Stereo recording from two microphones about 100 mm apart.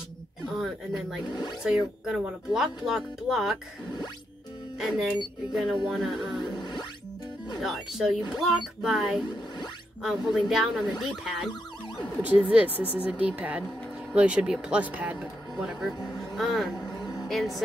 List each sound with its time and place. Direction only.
1.3 s speech: 45° left (ahead or behind)
1.6 s speech: 5° right (ahead or behind)
4.7 s speech: 5° right (ahead or behind)
6.5 s music: 45° left (ahead or behind)
7.6 s speech: 5° right (ahead or behind)
15.1 s speech: centre (ahead or behind)
17.0 s a sound: 40° left (ahead or behind)
17.3 s speech: centre (ahead or behind)